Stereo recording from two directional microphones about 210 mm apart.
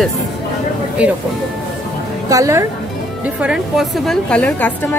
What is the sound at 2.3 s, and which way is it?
Speech, 15° right (ahead or behind).